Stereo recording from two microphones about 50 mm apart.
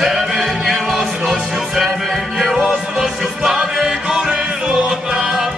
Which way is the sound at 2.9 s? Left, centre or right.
Centre.